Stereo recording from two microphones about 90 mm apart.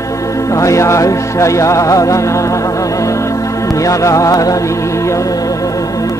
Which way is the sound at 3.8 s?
35° left (ahead or behind).